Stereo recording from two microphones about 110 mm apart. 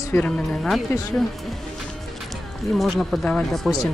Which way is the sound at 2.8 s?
Centre (ahead or behind).